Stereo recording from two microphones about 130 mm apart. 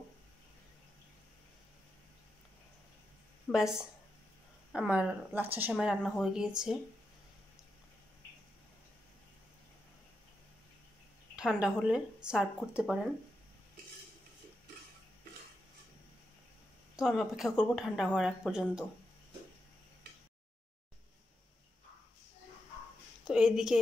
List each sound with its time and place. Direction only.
3.5 s speech: 5° right (ahead or behind)
11.3 s speech: 5° right (ahead or behind)
16.9 s speech: 5° right (ahead or behind)
23.2 s speech: 5° right (ahead or behind)